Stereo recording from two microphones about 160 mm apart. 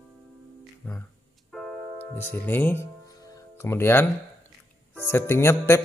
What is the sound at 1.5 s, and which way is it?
Music, 10° left (ahead or behind).